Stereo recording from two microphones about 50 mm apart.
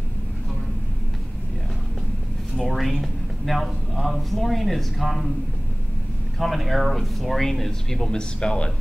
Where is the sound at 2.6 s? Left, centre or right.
Centre.